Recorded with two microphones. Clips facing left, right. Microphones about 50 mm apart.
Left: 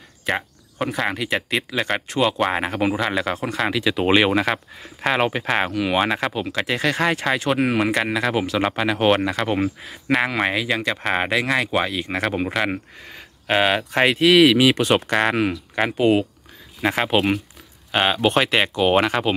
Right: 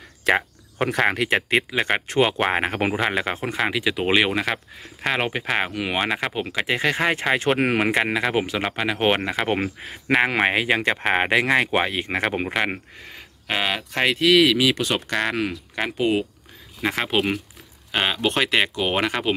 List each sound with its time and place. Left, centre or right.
0.3 s speech: right
0.7 s speech: right
1.7 s speech: right
2.5 s speech: right
2.9 s speech: right
3.9 s speech: centre
6.5 s speech: centre
7.3 s speech: right
7.9 s speech: right
8.5 s speech: centre
9.5 s speech: right
12.4 s speech: centre
13.6 s speech: centre
15.7 s speech: centre